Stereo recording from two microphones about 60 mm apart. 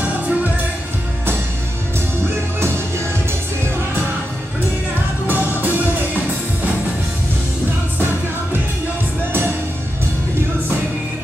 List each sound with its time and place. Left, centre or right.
0.0 s music: right
5.2 s music: right